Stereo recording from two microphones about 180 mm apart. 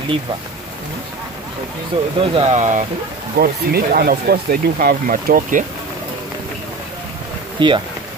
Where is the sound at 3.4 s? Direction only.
55° right (ahead or behind).